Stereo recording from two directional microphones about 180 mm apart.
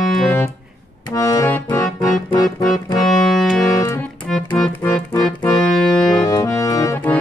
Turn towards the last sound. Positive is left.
turn(degrees=15)  # may be behind; listen again after turning